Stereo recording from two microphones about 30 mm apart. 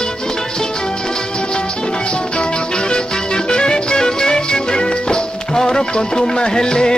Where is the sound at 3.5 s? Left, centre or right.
Left.